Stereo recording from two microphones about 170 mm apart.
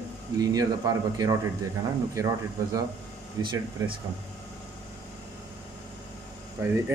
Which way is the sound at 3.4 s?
25° right (ahead or behind).